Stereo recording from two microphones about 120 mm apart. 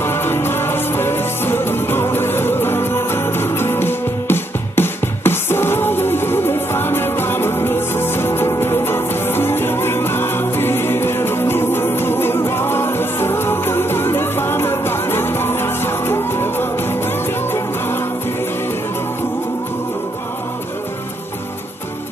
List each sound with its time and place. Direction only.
0.0 s music: 20° left (ahead or behind)